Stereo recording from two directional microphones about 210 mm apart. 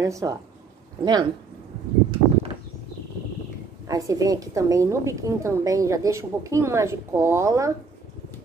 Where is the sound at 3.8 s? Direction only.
15° right (ahead or behind).